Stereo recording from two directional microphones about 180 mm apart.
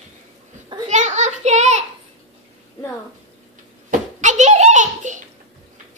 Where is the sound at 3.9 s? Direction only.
45° right (ahead or behind).